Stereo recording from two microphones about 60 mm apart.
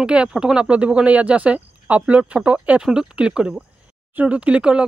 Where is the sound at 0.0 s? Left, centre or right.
Centre.